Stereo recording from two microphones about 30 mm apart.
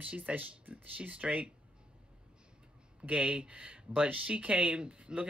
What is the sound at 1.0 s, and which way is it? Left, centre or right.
Speech, right.